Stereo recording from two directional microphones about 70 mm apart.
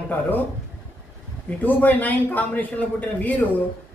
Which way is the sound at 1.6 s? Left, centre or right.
Left.